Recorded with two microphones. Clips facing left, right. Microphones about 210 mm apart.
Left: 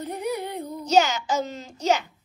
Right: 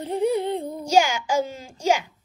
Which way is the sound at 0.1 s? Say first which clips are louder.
Right 9 dB; 25° right (ahead or behind).